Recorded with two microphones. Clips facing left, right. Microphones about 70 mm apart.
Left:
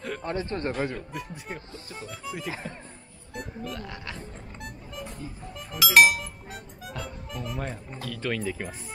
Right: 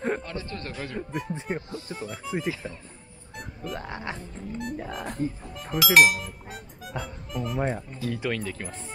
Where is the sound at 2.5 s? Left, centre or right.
Left.